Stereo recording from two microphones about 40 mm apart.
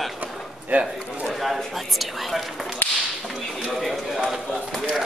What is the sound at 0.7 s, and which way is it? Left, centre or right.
Speech, right.